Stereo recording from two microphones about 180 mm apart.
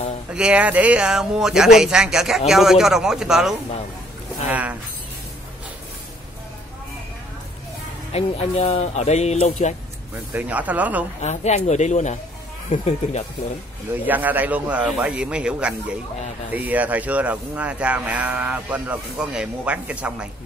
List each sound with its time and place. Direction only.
0.3 s a man's voice: 5° right (ahead or behind)
8.1 s speech: 35° left (ahead or behind)
10.1 s speech: 10° right (ahead or behind)
11.1 s speech: 40° left (ahead or behind)
14.0 s speech: 10° right (ahead or behind)